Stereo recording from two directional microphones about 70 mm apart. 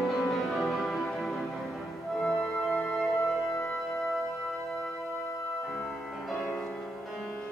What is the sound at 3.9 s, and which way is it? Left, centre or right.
Music, centre.